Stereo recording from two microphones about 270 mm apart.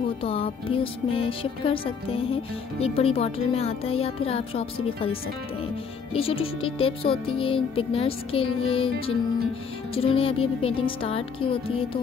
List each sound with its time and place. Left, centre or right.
0.2 s speech: left
6.1 s speech: left